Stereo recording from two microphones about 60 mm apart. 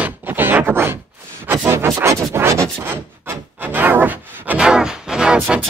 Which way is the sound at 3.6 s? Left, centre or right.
Right.